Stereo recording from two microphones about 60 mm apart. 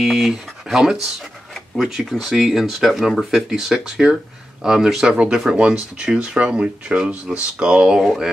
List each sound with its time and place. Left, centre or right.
0.0 s speech: centre
8.0 s speech: centre